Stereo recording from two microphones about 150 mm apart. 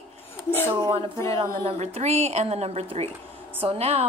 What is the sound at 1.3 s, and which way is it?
A woman's voice, 40° right (ahead or behind).